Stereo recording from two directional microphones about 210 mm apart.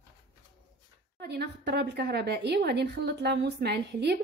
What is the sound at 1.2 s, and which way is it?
A woman's voice, 50° right (ahead or behind).